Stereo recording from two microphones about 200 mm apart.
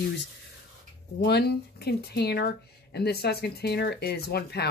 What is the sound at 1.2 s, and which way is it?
Speech, 55° left (ahead or behind).